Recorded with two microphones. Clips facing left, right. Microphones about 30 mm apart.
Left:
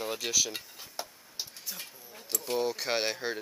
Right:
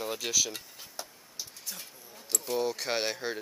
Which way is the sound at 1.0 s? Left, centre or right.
Left.